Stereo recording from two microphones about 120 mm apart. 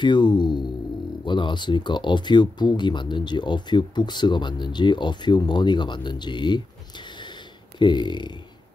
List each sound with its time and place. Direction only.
0.0 s speech: 40° left (ahead or behind)